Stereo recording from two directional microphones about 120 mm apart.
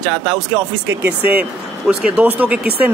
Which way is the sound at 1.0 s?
15° right (ahead or behind).